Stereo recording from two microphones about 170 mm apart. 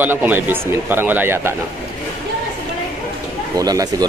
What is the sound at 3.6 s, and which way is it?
Speech, 20° right (ahead or behind).